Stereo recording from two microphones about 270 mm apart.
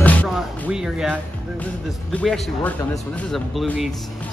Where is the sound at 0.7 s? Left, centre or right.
Centre.